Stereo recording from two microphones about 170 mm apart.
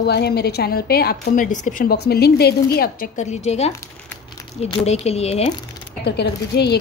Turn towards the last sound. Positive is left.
turn(degrees=75)  # may be behind; listen again after turning